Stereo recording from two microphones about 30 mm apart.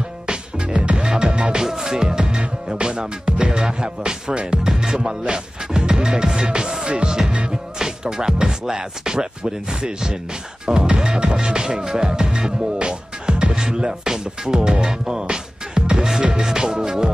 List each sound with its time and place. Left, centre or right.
0.9 s music: right
1.6 s music: centre
4.8 s music: centre
5.2 s speech: right
7.1 s music: right
7.8 s speech: right
10.6 s music: right
11.3 s speech: right
11.9 s music: right
13.7 s speech: centre
16.2 s music: right
16.4 s speech: right